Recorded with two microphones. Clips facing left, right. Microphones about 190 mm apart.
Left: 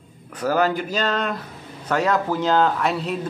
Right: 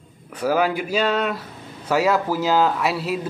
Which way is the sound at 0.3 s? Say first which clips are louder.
Even; 10° right (ahead or behind).